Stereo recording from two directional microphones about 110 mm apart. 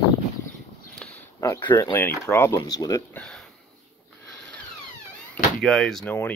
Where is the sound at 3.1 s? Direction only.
5° left (ahead or behind).